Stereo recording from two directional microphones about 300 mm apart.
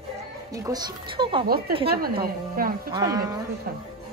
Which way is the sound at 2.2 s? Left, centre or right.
Right.